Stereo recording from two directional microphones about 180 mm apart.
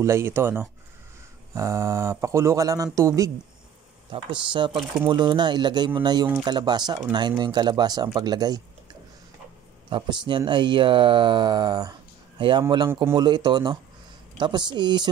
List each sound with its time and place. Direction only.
0.0 s speech: 15° right (ahead or behind)
9.8 s speech: 25° right (ahead or behind)
12.9 s speech: 15° right (ahead or behind)
13.2 s speech: 25° right (ahead or behind)